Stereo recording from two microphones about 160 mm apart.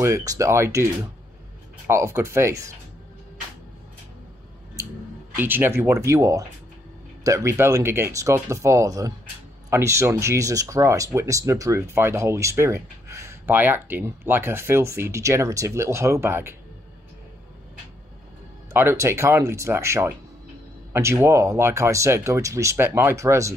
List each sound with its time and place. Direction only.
0.0 s speech: 20° right (ahead or behind)
1.9 s speech: 20° right (ahead or behind)
5.3 s speech: 10° right (ahead or behind)
18.7 s speech: 15° right (ahead or behind)